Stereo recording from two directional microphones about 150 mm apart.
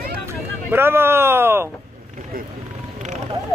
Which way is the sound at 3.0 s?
50° right (ahead or behind).